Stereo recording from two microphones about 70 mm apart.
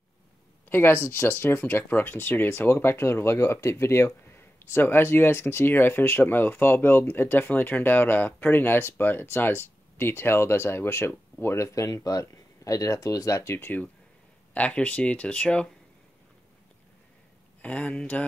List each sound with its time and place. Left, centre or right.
0.7 s speech: left
11.9 s speech: left
14.5 s speech: centre
17.6 s speech: centre